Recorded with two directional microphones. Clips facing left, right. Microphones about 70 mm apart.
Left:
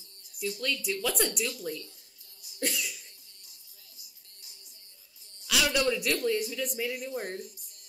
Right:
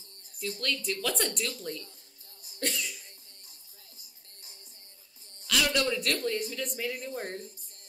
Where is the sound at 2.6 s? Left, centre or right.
Centre.